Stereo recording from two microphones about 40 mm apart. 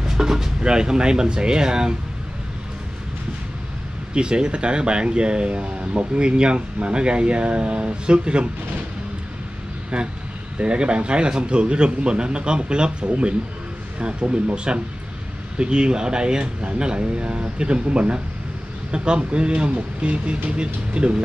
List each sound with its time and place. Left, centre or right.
0.0 s speech: centre
4.1 s speech: right
9.9 s speech: right